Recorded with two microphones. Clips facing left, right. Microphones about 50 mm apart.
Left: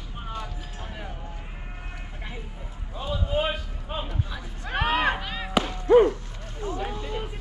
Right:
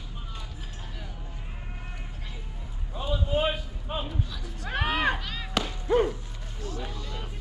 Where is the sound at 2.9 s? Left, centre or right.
Centre.